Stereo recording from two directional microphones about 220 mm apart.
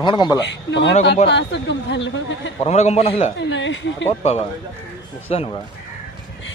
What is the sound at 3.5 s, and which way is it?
Speech, 55° left (ahead or behind).